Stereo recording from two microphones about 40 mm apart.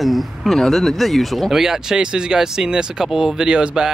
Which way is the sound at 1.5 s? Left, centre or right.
Centre.